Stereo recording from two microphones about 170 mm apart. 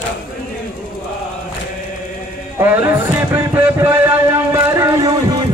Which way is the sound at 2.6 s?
15° right (ahead or behind).